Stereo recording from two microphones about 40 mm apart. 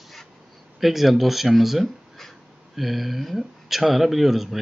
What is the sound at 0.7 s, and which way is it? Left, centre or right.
Speech, centre.